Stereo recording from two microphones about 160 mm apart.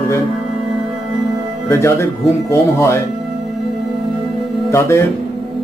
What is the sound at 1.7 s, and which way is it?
Speech, 15° left (ahead or behind).